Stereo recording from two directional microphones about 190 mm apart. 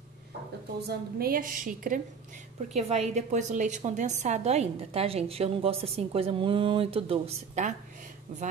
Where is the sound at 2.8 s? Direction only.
35° right (ahead or behind).